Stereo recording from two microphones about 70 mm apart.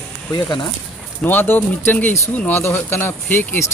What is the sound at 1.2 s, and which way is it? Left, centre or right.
Speech, left.